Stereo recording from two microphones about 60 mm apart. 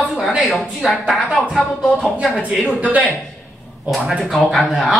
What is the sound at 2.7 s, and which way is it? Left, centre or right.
Speech, right.